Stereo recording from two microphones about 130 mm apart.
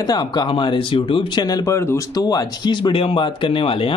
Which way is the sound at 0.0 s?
35° left (ahead or behind).